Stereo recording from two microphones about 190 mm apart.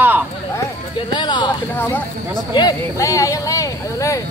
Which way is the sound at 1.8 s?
10° left (ahead or behind).